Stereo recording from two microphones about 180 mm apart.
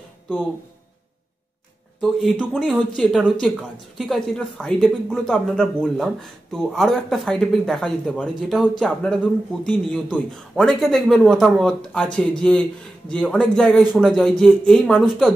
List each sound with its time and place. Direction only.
2.0 s speech: centre (ahead or behind)